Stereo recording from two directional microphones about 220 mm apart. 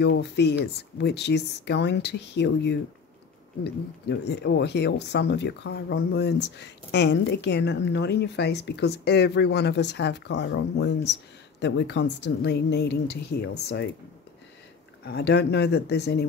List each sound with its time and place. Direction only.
0.0 s speech: 50° left (ahead or behind)
15.0 s speech: 50° left (ahead or behind)